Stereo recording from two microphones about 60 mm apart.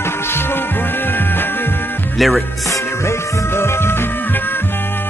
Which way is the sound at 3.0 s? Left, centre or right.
Left.